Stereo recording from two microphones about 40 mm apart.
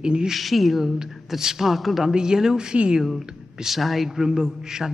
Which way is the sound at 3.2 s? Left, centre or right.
Centre.